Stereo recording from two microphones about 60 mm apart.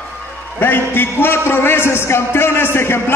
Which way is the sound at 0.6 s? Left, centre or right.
Left.